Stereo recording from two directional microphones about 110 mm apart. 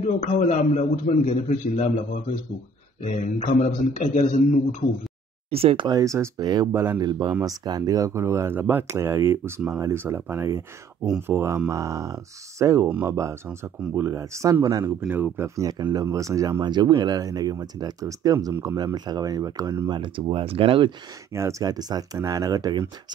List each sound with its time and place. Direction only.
0.2 s a man's voice: 90° left
3.0 s a man's voice: 90° left
5.5 s speech: 60° right (ahead or behind)
5.9 s speech: 30° right (ahead or behind)
6.4 s speech: 40° right (ahead or behind)
6.7 s speech: 25° right (ahead or behind)
7.1 s speech: 40° right (ahead or behind)
15.0 s speech: 15° right (ahead or behind)
19.9 s speech: 50° right (ahead or behind)
21.3 s speech: 25° right (ahead or behind)